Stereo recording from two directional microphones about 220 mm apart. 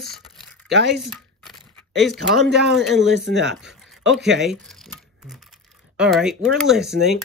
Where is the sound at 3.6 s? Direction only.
Centre (ahead or behind).